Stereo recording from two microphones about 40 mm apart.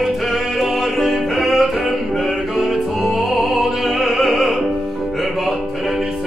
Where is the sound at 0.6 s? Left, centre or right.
Centre.